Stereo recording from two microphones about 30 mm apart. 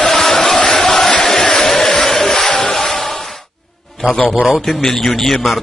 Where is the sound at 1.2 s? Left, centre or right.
Left.